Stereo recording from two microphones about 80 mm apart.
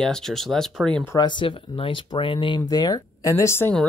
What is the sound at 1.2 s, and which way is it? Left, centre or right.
Speech, left.